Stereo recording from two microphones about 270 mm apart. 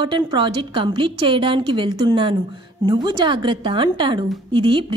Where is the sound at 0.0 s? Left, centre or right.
Centre.